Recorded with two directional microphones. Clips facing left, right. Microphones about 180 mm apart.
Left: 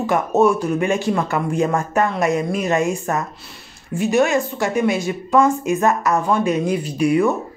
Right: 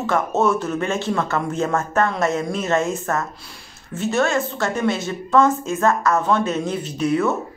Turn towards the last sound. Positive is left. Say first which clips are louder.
# left 3 dB
turn(degrees=10)  # may be behind; listen again after turning